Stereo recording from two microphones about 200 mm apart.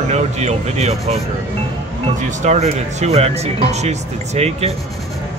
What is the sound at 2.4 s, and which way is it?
Speech, 35° right (ahead or behind).